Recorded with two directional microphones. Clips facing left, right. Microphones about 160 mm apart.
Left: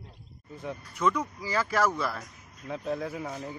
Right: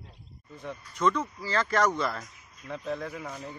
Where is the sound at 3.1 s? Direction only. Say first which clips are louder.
Left 3 dB; 25° left (ahead or behind).